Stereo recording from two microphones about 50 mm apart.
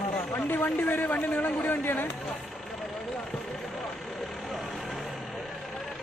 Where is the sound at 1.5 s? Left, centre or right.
Left.